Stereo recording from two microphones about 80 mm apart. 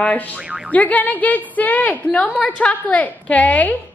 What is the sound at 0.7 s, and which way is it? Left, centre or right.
A woman's voice, centre.